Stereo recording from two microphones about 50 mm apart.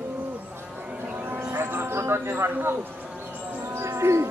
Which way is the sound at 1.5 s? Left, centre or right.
Right.